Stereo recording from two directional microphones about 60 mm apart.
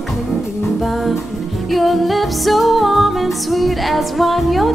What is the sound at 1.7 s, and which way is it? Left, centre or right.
Music, centre.